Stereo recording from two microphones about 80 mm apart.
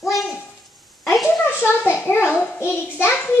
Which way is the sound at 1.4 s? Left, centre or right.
Left.